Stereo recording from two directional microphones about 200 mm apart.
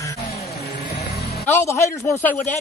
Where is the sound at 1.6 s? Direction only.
15° left (ahead or behind).